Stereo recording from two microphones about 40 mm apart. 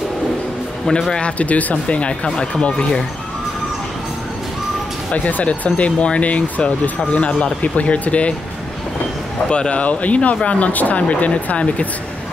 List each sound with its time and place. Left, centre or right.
1.4 s speech: left
2.2 s speech: centre
2.6 s speech: left
5.1 s speech: left
7.7 s speech: left
9.5 s speech: left